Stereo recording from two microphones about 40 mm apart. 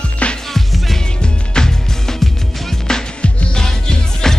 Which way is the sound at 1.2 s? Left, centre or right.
Centre.